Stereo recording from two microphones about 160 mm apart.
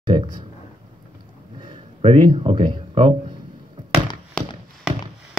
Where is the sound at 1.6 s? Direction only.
35° right (ahead or behind).